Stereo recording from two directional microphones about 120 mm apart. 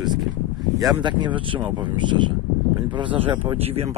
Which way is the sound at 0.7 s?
35° right (ahead or behind).